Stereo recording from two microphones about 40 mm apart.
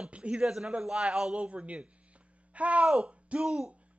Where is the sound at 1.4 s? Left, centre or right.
Right.